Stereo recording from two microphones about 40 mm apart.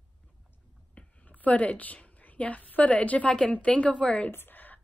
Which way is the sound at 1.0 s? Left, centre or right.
Left.